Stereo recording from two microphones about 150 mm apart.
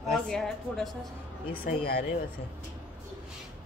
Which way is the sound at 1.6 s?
80° left.